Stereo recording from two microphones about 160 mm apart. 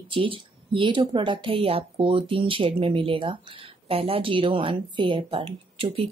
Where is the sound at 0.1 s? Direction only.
35° right (ahead or behind).